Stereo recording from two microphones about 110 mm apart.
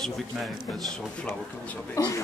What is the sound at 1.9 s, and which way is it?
Speech, 30° left (ahead or behind).